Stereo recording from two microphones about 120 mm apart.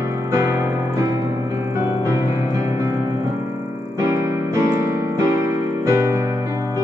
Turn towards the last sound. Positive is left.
turn(degrees=-25)  # may be behind; listen again after turning